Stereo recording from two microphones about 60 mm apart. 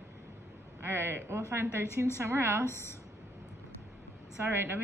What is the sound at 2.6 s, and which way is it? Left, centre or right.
Speech, left.